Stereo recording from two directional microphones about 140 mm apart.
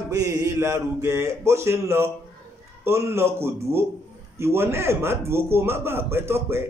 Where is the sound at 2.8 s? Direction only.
20° right (ahead or behind).